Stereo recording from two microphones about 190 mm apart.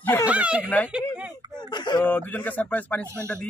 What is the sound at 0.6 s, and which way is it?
Speech, 10° left (ahead or behind).